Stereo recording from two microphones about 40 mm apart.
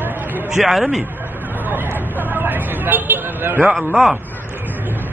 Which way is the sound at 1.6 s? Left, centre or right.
Right.